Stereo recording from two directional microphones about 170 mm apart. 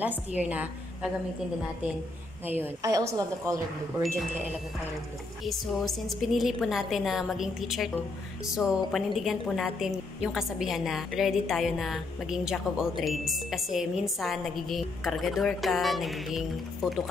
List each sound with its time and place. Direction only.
0.0 s a woman's voice: 10° right (ahead or behind)
2.4 s a woman's voice: 10° right (ahead or behind)
5.4 s a woman's voice: centre (ahead or behind)